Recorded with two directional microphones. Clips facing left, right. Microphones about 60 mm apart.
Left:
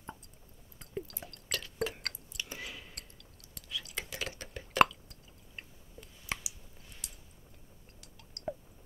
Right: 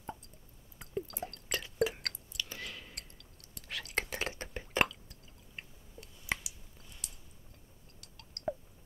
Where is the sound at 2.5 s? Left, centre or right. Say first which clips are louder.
Left 1 dB; centre.